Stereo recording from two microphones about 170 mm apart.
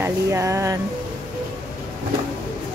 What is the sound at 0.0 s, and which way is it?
Music, 15° right (ahead or behind).